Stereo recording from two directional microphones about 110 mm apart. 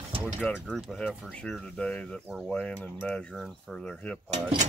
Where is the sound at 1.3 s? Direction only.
10° left (ahead or behind).